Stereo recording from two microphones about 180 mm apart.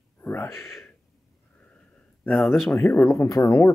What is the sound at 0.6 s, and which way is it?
Speech, centre (ahead or behind).